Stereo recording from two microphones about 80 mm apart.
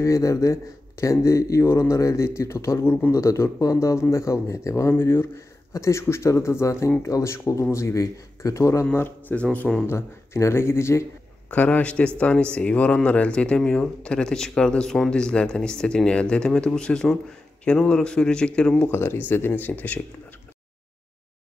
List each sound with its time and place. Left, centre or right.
0.0 s speech: left
3.1 s speech: left
9.3 s speech: centre
9.8 s speech: left
11.5 s speech: centre
18.9 s speech: left